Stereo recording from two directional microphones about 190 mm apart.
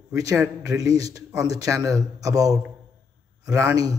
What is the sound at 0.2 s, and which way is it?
A man's voice, 15° right (ahead or behind).